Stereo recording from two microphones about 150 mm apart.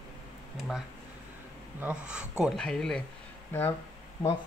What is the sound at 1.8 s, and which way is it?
Speech, 10° right (ahead or behind).